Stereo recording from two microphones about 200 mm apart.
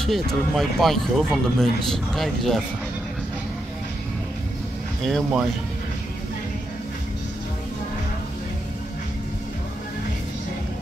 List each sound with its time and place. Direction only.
0.0 s speech: centre (ahead or behind)
5.0 s speech: centre (ahead or behind)